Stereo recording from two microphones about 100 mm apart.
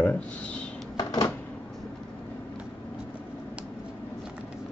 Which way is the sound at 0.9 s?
40° left (ahead or behind).